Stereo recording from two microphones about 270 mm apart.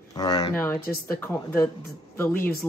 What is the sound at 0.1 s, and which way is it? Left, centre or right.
Speech, centre.